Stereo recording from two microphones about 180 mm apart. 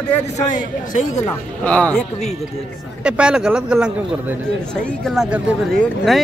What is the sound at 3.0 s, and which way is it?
A man's voice, 5° right (ahead or behind).